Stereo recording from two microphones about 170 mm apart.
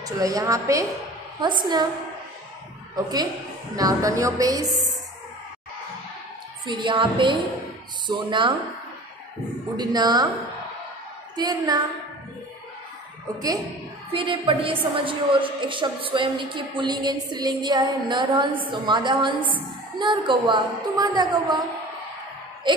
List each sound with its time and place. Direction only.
0.0 s a woman's voice: 20° right (ahead or behind)
3.0 s a woman's voice: 20° right (ahead or behind)
6.6 s a woman's voice: 30° right (ahead or behind)
9.8 s a woman's voice: 25° right (ahead or behind)
11.3 s a woman's voice: 25° right (ahead or behind)
14.1 s a woman's voice: 30° right (ahead or behind)
22.7 s speech: 25° right (ahead or behind)